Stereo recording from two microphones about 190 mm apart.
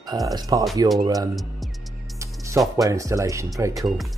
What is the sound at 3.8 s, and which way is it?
Speech, centre (ahead or behind).